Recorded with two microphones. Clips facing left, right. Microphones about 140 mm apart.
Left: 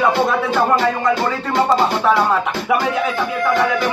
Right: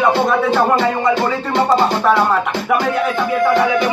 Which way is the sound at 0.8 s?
Centre (ahead or behind).